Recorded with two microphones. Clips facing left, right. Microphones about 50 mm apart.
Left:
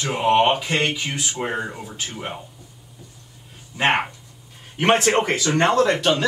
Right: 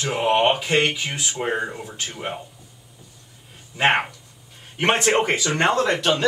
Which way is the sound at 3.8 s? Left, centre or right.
Centre.